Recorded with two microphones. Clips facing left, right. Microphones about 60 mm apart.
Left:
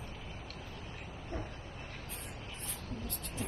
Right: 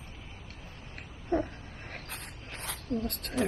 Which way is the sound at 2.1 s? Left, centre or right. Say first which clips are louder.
Right 2 dB; right.